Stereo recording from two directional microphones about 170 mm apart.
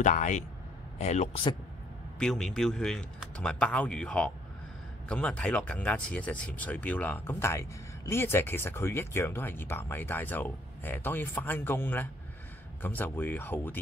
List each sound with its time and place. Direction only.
0.0 s speech: 45° left (ahead or behind)
2.1 s speech: 5° left (ahead or behind)